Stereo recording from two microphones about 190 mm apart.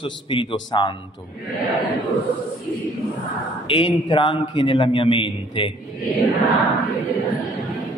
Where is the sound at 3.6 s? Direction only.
25° left (ahead or behind).